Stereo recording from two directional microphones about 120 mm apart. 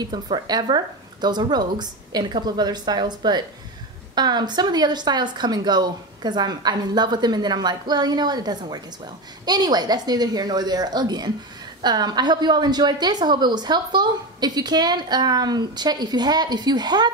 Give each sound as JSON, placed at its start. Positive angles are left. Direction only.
{"t": 0.0, "sound": "a woman's voice", "side_deg": -35}